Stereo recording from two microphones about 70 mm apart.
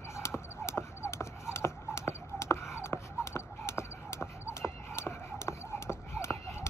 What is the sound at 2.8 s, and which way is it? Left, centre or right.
Music, left.